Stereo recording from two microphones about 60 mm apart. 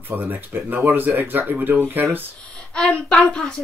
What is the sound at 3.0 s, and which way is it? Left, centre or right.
Speech, centre.